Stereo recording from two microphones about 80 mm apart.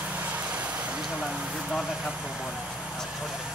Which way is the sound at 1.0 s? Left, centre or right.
Centre.